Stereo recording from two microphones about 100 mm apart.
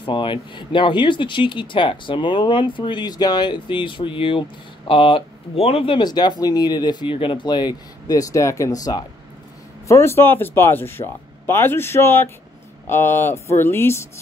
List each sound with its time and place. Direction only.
0.0 s speech: 55° left (ahead or behind); by 5.9 s 75° left (ahead or behind)
5.9 s speech: 45° left (ahead or behind)
9.8 s speech: 25° left (ahead or behind)